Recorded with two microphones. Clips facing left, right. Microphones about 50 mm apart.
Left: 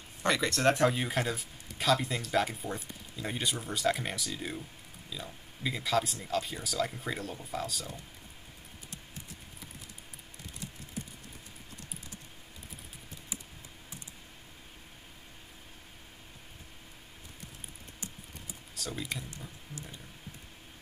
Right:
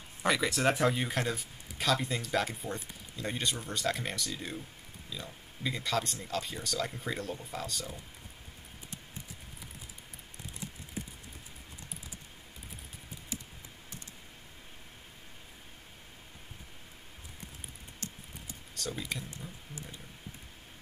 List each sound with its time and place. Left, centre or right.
0.2 s speech: centre
13.3 s computer keyboard: centre
18.8 s speech: centre
19.7 s a sound: right